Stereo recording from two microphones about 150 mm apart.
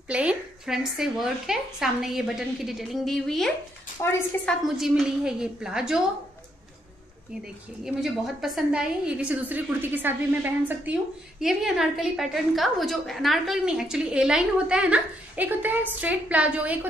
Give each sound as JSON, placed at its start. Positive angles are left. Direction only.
{"t": 0.1, "sound": "a woman's voice", "side_deg": -10}
{"t": 4.0, "sound": "a woman's voice", "side_deg": 20}
{"t": 4.5, "sound": "a woman's voice", "side_deg": 0}
{"t": 7.8, "sound": "a woman's voice", "side_deg": 0}